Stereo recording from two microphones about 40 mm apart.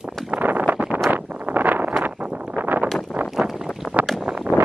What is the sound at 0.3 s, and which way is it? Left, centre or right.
Wind noise, right.